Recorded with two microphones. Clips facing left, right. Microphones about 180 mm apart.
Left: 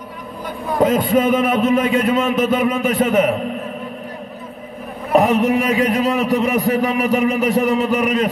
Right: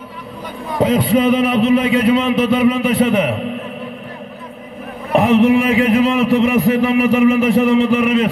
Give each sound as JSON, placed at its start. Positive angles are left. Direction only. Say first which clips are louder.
{"t": 0.7, "sound": "a man's voice", "louder": "right 1 dB", "side_deg": 45}
{"t": 5.1, "sound": "a man's voice", "louder": "right 3 dB", "side_deg": 40}